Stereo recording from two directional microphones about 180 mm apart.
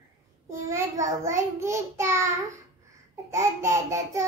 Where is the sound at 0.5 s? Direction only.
15° right (ahead or behind).